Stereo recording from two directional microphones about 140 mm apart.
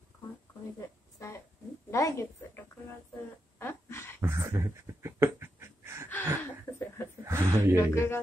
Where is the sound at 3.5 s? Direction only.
15° left (ahead or behind).